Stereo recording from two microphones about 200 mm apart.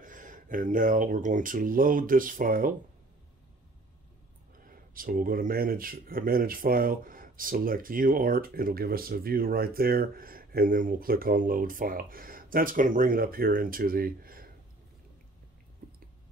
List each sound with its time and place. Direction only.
0.0 s speech: 40° right (ahead or behind)
4.6 s speech: 45° right (ahead or behind)
15.8 s a sound: 45° right (ahead or behind)